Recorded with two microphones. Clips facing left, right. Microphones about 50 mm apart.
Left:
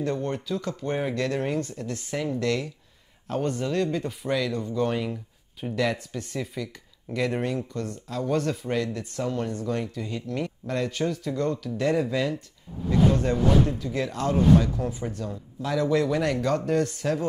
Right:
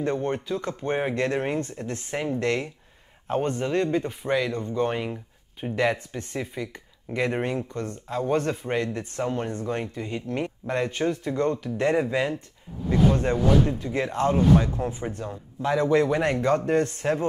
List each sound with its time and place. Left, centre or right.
0.0 s speech: right